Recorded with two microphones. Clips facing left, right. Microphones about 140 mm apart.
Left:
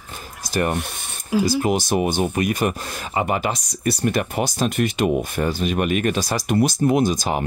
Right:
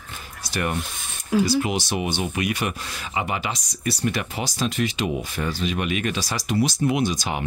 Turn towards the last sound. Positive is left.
turn(degrees=45)  # may be behind; listen again after turning